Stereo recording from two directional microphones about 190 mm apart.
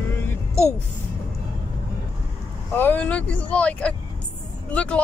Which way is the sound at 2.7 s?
10° left (ahead or behind).